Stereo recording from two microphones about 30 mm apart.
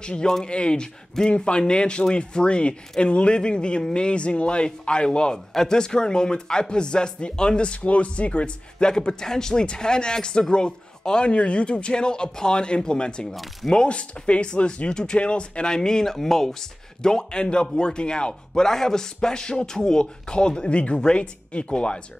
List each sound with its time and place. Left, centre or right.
0.0 s speech: left
7.8 s speech: left
8.8 s speech: left
11.2 s speech: left
13.8 s speech: left
14.9 s speech: left
17.0 s speech: left